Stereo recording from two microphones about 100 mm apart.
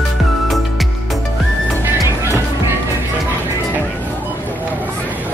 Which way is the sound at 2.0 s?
25° right (ahead or behind).